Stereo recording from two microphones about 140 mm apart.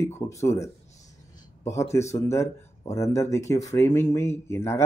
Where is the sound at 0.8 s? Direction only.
55° left (ahead or behind).